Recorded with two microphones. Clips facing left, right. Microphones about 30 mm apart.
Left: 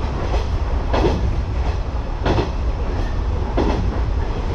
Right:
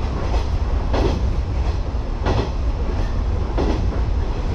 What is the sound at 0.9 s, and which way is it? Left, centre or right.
Train, left.